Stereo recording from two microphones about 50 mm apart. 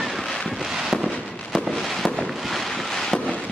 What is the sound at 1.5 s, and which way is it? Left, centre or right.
Fireworks, centre.